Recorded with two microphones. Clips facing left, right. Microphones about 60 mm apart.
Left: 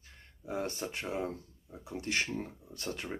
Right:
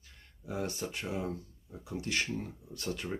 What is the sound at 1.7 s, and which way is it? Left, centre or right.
Speech, left.